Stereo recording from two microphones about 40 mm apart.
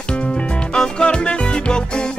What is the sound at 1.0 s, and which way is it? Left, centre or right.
Music, left.